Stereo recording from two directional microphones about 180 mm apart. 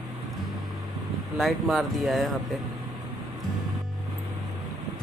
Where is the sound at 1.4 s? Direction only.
Centre (ahead or behind).